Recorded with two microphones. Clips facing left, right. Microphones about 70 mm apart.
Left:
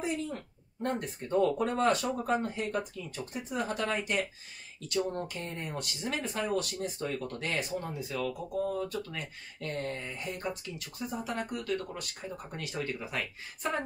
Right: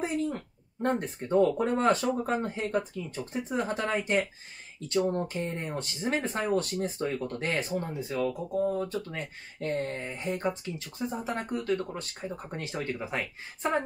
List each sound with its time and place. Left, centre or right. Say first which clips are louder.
0.8 s speech: right 5 dB; right